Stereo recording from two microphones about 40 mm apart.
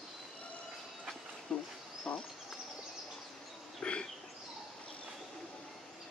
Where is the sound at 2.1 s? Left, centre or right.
Left.